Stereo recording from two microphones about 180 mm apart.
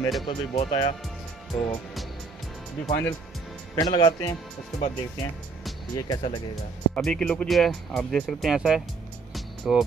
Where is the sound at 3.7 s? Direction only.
25° left (ahead or behind).